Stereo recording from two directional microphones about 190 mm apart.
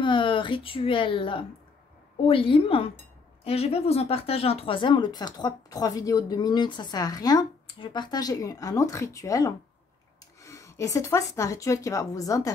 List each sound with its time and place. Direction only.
0.0 s speech: 25° left (ahead or behind)